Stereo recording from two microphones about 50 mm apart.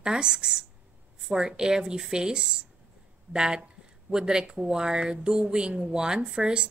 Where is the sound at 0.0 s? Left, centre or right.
Centre.